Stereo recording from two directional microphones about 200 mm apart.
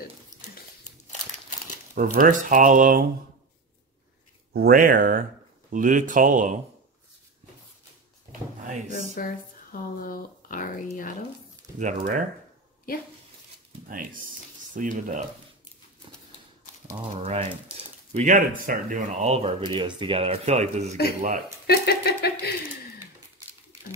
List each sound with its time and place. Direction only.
2.0 s speech: 45° right (ahead or behind)
4.6 s speech: 45° right (ahead or behind)
8.3 s drawer open or close: 40° right (ahead or behind)
8.9 s speech: 45° left (ahead or behind)
11.8 s speech: 40° right (ahead or behind)
14.8 s speech: 40° right (ahead or behind)
17.2 s speech: 30° right (ahead or behind)
21.6 s speech: 50° left (ahead or behind)